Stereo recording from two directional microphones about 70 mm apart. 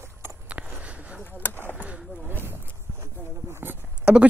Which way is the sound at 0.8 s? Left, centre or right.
Centre.